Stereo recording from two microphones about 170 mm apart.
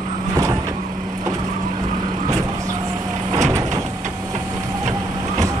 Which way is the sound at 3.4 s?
20° right (ahead or behind).